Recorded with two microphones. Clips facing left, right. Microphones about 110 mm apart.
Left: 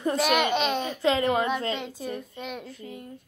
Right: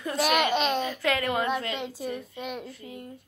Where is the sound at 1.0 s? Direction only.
25° left (ahead or behind).